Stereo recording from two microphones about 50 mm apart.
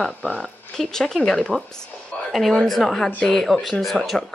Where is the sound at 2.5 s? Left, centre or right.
Centre.